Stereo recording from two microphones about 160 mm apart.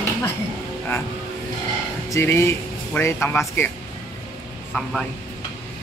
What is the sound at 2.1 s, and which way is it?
Speech, 15° left (ahead or behind).